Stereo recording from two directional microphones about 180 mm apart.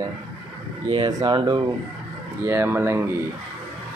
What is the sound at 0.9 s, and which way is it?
Mantra, 25° right (ahead or behind).